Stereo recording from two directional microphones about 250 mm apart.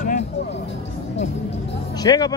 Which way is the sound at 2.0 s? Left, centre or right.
Centre.